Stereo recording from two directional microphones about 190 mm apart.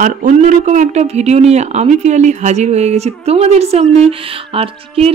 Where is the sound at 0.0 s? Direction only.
40° right (ahead or behind).